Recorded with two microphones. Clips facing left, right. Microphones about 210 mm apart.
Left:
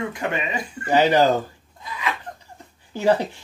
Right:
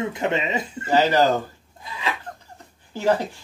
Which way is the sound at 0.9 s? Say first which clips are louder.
Left 1 dB; 15° left (ahead or behind).